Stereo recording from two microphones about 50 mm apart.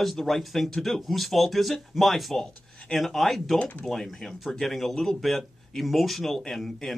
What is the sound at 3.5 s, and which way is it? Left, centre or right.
Speech, left.